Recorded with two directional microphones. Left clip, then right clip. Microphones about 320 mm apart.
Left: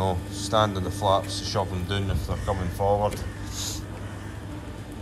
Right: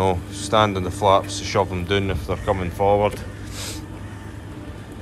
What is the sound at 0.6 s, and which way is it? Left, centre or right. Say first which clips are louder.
Speech: right 5 dB; centre.